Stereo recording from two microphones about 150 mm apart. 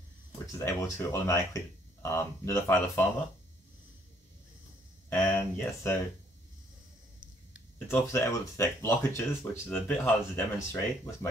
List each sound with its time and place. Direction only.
0.5 s speech: 20° left (ahead or behind)
5.1 s speech: 15° left (ahead or behind)
7.9 s speech: 15° left (ahead or behind)